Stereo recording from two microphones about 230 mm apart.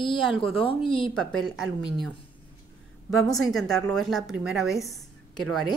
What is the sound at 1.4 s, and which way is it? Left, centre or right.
Speech, centre.